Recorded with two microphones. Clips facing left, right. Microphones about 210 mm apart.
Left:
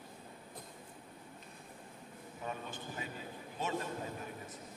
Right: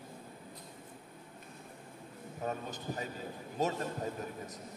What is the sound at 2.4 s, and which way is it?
A man's voice, 40° right (ahead or behind).